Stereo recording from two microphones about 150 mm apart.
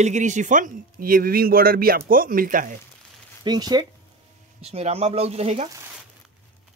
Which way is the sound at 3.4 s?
30° right (ahead or behind).